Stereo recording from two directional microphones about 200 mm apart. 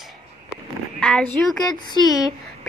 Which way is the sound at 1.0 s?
5° left (ahead or behind).